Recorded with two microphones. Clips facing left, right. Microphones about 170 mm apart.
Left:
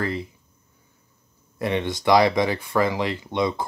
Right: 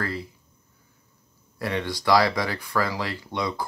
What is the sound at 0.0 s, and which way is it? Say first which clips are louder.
Speech: left 4 dB; 20° left (ahead or behind).